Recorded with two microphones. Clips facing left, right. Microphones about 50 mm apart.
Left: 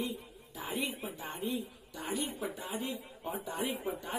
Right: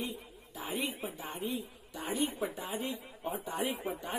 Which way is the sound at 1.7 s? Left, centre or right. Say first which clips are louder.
Right 1 dB; right.